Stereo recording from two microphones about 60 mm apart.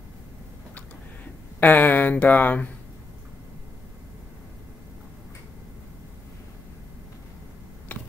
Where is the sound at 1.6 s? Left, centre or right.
Left.